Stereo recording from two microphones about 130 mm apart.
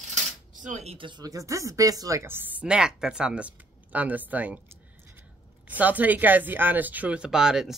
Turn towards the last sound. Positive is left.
turn(degrees=-5)  # may be behind; listen again after turning